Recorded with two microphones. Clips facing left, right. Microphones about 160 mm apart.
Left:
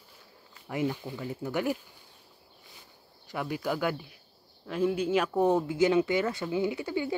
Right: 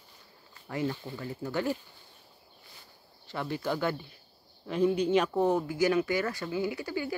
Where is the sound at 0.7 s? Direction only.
15° left (ahead or behind).